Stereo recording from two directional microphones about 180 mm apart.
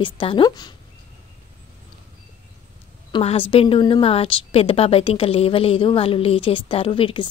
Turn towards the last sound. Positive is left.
turn(degrees=30)  # may be behind; listen again after turning